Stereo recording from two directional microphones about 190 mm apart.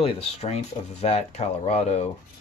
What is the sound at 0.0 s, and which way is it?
Speech, 35° left (ahead or behind).